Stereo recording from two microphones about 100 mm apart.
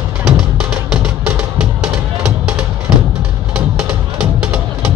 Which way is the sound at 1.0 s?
10° right (ahead or behind).